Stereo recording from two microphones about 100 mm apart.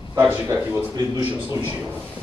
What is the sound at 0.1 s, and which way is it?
A man's voice, 20° right (ahead or behind).